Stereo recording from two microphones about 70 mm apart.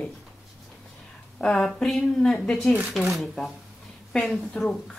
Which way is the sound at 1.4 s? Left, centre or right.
Centre.